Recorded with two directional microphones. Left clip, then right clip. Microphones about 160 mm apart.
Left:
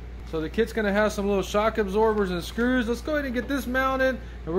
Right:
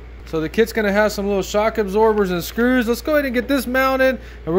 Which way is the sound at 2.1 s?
45° right (ahead or behind).